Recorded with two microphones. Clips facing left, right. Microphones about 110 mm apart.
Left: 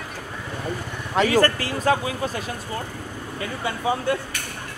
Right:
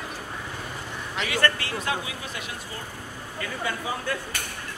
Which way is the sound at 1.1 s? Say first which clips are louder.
Left 7 dB; 40° left (ahead or behind).